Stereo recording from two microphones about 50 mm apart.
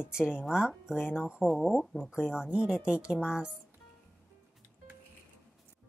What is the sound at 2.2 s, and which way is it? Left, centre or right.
Speech, centre.